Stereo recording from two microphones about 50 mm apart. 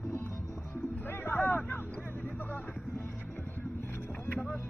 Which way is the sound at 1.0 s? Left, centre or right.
Left.